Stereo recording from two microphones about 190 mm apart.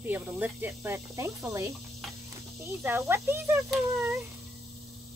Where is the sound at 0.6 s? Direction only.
15° right (ahead or behind).